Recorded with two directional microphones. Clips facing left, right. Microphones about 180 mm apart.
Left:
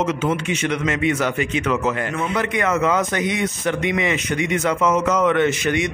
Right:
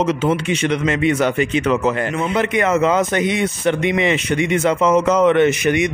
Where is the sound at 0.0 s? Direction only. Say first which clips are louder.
Right 3 dB; 30° right (ahead or behind).